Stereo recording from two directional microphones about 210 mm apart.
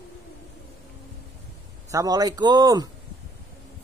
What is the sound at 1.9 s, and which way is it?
A man's voice, 15° right (ahead or behind).